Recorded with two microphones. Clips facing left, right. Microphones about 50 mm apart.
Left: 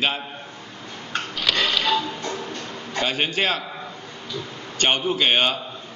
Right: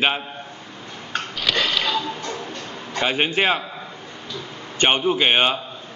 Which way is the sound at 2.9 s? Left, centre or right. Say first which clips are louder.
Right 3 dB; centre.